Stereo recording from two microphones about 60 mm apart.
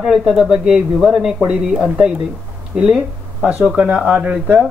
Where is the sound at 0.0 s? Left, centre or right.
Centre.